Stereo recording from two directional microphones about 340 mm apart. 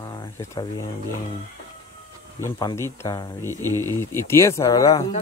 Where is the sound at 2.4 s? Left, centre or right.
Centre.